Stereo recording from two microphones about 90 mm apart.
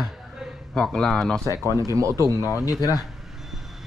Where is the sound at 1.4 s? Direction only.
35° right (ahead or behind).